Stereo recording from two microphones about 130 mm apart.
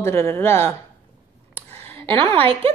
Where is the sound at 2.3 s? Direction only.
45° right (ahead or behind).